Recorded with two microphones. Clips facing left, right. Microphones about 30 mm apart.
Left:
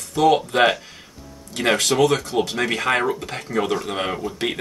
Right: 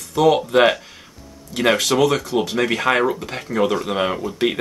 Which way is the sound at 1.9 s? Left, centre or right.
Centre.